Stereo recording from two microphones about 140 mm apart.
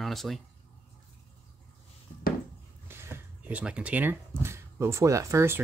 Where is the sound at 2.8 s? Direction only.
15° right (ahead or behind).